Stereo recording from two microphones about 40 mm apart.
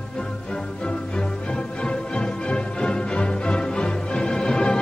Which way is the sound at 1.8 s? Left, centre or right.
Left.